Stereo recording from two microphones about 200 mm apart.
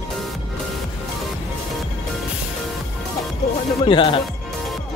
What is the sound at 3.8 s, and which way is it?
Speech, 25° left (ahead or behind).